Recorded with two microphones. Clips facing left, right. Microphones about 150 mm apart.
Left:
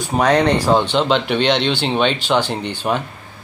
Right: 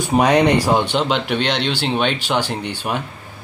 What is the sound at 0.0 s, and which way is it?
Speech, 15° right (ahead or behind).